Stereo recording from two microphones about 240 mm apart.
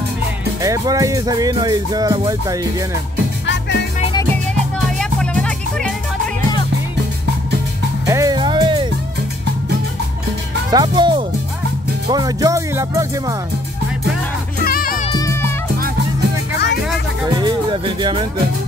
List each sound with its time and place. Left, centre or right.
0.6 s music: centre
4.9 s music: centre
8.1 s music: centre
10.7 s speech: centre
12.1 s music: centre
14.6 s music: left
15.1 s music: centre
17.3 s speech: centre